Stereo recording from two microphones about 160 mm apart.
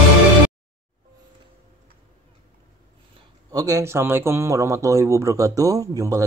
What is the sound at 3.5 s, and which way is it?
Speech, 20° right (ahead or behind).